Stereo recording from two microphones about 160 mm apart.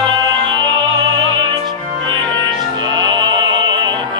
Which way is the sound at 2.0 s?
30° right (ahead or behind).